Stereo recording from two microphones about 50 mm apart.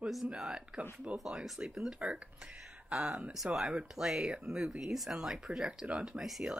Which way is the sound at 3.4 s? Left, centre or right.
Right.